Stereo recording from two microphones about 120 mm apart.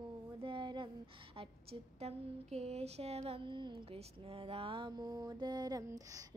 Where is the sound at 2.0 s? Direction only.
65° right (ahead or behind).